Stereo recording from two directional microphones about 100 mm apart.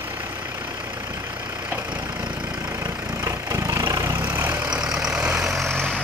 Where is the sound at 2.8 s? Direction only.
35° right (ahead or behind).